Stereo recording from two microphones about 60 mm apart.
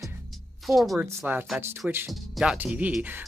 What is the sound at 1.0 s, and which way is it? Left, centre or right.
Speech, right.